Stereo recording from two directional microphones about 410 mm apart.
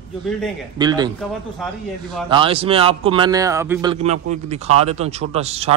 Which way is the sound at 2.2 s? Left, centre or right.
Centre.